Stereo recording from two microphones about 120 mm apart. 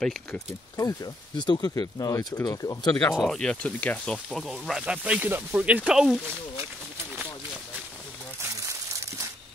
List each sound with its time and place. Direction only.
0.7 s speech: 30° left (ahead or behind)
3.2 s speech: 5° left (ahead or behind)
8.4 s crumpling: 25° right (ahead or behind)